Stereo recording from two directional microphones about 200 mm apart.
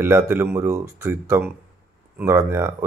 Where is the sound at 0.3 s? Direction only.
15° right (ahead or behind).